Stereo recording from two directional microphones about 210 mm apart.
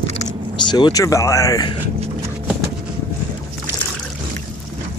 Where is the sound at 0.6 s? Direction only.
20° left (ahead or behind).